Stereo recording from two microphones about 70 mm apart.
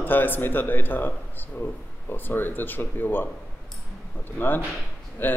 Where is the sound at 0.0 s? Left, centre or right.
Left.